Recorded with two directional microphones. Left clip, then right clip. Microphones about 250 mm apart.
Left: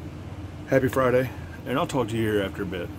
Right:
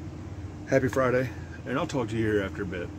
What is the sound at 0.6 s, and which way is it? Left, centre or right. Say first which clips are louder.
Speech: left 3 dB; centre.